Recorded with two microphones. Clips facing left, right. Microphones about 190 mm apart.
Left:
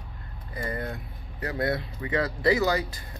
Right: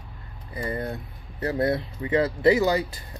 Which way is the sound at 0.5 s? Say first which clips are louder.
Right 3 dB; 25° right (ahead or behind).